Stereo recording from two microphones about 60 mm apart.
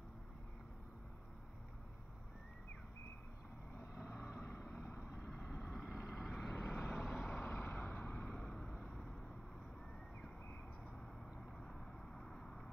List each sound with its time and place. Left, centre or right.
4.6 s vehicle: centre
5.2 s vehicle: centre
5.7 s vehicle: centre; by 8.3 s left
8.3 s vehicle: centre
12.4 s vehicle: centre